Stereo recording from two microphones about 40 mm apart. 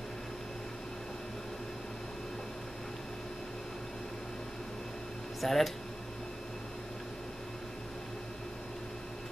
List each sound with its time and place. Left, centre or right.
5.4 s speech: centre